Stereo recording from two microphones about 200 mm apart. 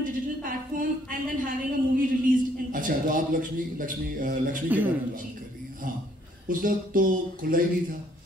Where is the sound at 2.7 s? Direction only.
45° right (ahead or behind).